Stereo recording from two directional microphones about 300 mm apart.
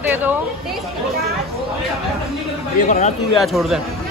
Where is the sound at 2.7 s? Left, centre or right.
Left.